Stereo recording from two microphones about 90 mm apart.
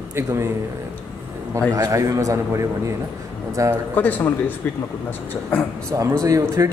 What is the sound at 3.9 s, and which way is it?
Speech, 20° left (ahead or behind).